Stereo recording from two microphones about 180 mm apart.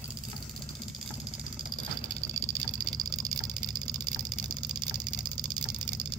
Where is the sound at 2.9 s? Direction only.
20° right (ahead or behind).